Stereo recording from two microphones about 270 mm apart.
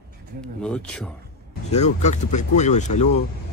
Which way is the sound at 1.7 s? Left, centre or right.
Left.